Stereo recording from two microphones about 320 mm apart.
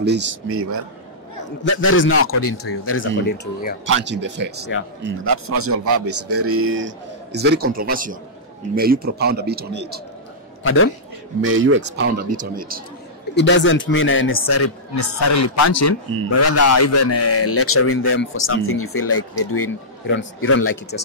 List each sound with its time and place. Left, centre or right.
0.0 s speech: right
1.6 s a man's voice: left
3.8 s speech: right
5.0 s a man's voice: right
10.6 s a man's voice: left
11.4 s speech: right
12.3 s a man's voice: right
13.3 s a man's voice: left
15.0 s a man's voice: left